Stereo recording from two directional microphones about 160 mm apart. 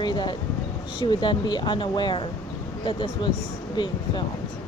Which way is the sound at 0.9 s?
30° left (ahead or behind).